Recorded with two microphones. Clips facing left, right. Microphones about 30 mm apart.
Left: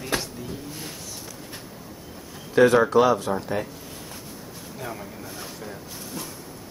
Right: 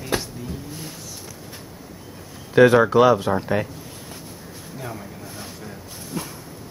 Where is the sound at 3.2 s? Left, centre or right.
Right.